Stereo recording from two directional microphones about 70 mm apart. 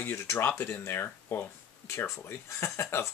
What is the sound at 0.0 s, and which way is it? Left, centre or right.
Speech, left.